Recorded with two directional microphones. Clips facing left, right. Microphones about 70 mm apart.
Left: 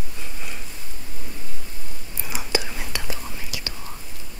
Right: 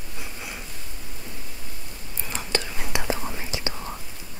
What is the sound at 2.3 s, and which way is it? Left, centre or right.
Whispering, centre.